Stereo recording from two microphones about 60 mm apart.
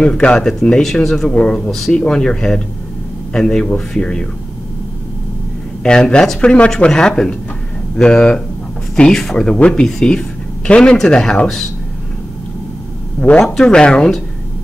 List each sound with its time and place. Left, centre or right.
0.0 s speech: centre
1.3 s a man's voice: centre
1.7 s speech: centre
5.9 s speech: centre
13.2 s a man's voice: left